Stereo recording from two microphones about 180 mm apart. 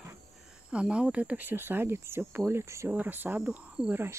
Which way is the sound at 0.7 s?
5° right (ahead or behind).